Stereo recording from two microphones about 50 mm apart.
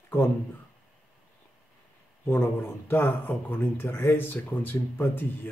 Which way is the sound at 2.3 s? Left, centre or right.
Left.